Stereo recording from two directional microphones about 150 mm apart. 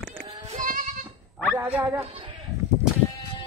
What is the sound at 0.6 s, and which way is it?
Goat, 60° right (ahead or behind).